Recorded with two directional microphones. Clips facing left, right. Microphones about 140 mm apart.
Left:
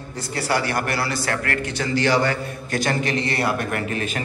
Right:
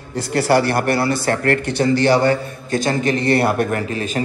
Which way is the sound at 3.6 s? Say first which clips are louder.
Right 3 dB; 35° right (ahead or behind).